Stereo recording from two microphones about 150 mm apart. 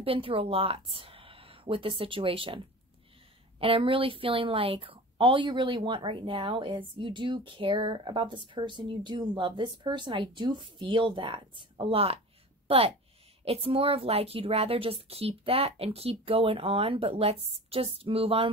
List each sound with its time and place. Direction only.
0.0 s a woman's voice: 35° right (ahead or behind)